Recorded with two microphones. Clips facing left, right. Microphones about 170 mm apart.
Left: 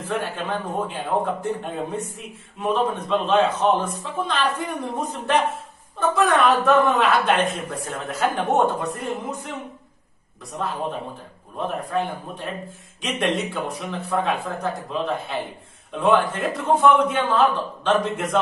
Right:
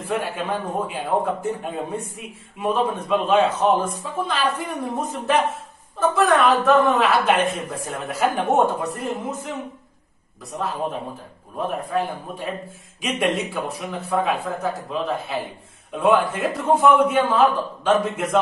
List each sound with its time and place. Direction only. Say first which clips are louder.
0.0 s a man's voice: right 1 dB; 10° right (ahead or behind)